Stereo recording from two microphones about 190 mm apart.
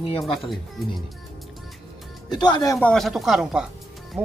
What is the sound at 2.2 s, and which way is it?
Speech, 20° left (ahead or behind).